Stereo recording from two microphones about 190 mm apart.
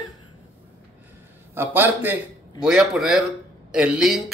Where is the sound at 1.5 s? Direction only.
10° right (ahead or behind).